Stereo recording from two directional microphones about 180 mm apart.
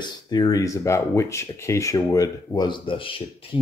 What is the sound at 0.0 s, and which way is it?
Speech, 20° left (ahead or behind).